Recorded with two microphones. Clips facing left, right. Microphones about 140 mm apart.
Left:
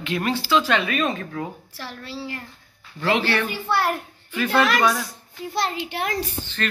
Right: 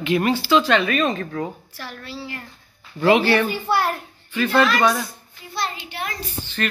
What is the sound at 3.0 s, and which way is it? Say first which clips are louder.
Speech: right 6 dB; 10° right (ahead or behind).